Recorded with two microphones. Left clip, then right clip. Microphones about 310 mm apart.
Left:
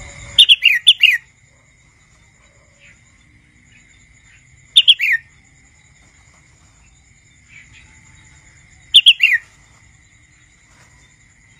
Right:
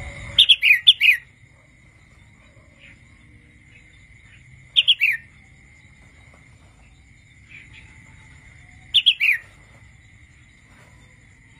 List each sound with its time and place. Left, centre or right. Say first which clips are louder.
0.4 s bird: left 4 dB; centre
4.7 s bird: left 6 dB; left
8.9 s bird: left 8 dB; left